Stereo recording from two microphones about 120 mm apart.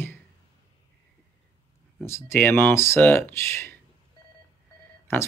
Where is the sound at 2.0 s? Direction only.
20° left (ahead or behind).